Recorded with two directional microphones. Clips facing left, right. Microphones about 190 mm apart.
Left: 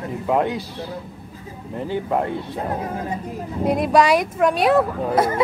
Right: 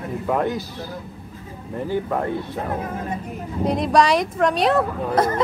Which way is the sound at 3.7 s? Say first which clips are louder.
Left 1 dB; 5° left (ahead or behind).